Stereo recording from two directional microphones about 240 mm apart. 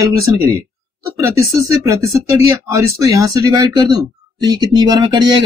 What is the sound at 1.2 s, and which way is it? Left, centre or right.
Speech, centre.